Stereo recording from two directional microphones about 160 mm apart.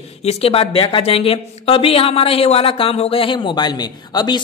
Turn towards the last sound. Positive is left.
turn(degrees=25)  # may be behind; listen again after turning